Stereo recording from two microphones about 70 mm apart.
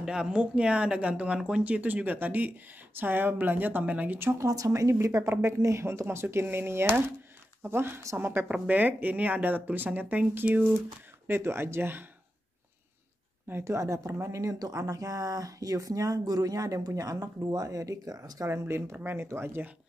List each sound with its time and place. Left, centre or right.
0.0 s speech: centre
4.2 s speech: right
4.5 s a woman's voice: right
8.0 s a woman's voice: right
8.5 s speech: right
11.2 s speech: right
13.5 s speech: right
13.7 s speech: right
18.4 s speech: right